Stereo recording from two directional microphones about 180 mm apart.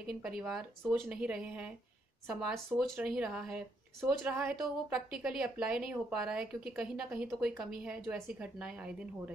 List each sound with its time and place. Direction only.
0.4 s speech: 5° right (ahead or behind)